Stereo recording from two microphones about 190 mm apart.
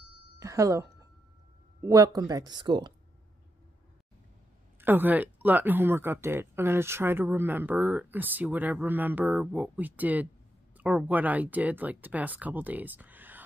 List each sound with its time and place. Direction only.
0.4 s speech: 15° right (ahead or behind)
4.7 s speech: 10° right (ahead or behind)